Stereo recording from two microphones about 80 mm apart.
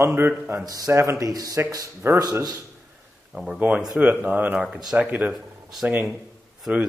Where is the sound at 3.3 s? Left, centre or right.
Centre.